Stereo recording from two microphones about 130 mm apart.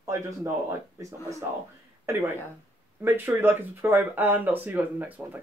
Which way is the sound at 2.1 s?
20° right (ahead or behind).